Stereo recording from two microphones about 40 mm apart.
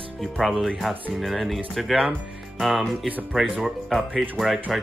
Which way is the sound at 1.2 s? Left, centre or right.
Centre.